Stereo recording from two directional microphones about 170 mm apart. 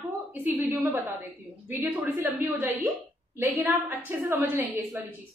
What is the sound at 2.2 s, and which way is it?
Speech, 15° right (ahead or behind).